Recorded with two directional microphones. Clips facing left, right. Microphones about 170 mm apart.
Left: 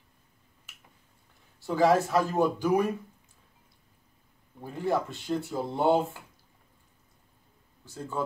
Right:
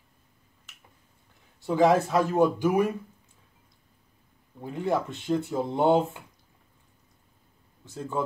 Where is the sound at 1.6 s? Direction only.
20° right (ahead or behind).